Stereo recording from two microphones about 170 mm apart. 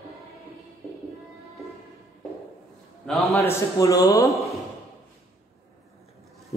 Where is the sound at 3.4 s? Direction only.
20° left (ahead or behind).